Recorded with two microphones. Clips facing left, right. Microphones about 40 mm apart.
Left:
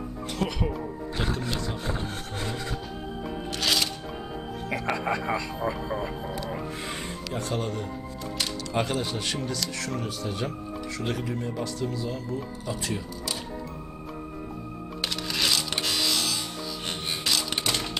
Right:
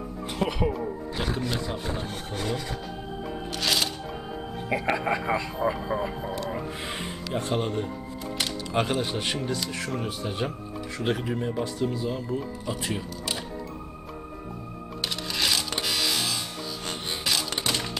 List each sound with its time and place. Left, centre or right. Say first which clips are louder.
0.4 s speech: right 3 dB; centre
4.6 s speech: right 2 dB; centre
7.3 s speech: right 3 dB; right
8.4 s music: right 1 dB; right
8.9 s speech: right 2 dB; centre
15.3 s music: even; centre
16.1 s music: even; centre